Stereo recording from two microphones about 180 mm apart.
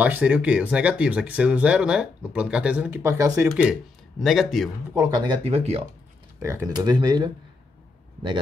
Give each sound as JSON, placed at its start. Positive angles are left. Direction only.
{"t": 0.0, "sound": "speech", "side_deg": -10}
{"t": 3.4, "sound": "speech", "side_deg": -5}
{"t": 4.9, "sound": "speech", "side_deg": -20}
{"t": 6.4, "sound": "speech", "side_deg": -15}